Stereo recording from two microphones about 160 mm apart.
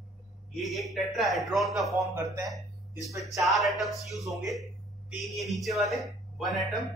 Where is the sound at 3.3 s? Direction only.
Centre (ahead or behind).